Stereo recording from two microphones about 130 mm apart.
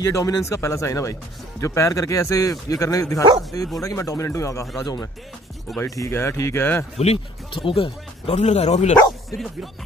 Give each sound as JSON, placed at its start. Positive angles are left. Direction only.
{"t": 0.0, "sound": "speech", "side_deg": 25}
{"t": 7.0, "sound": "speech", "side_deg": 45}